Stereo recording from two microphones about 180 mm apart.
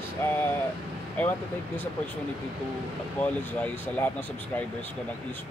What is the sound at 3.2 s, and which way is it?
Speech, 10° left (ahead or behind).